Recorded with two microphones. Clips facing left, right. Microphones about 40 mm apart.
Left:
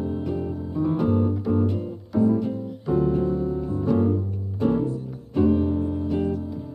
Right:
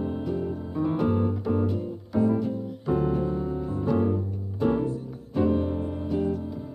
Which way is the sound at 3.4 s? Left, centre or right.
Centre.